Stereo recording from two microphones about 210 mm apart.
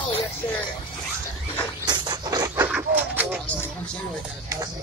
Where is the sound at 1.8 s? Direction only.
20° right (ahead or behind).